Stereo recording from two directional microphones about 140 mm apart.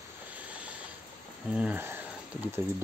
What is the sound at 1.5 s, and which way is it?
Speech, 10° right (ahead or behind).